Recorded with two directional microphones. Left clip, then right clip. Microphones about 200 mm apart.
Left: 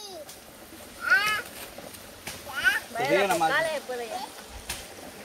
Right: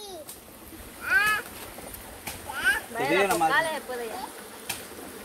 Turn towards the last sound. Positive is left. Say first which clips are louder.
# right 1 dB
turn(degrees=-50)  # may be behind; listen again after turning